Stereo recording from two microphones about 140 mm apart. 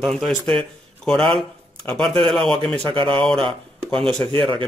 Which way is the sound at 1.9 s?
5° left (ahead or behind).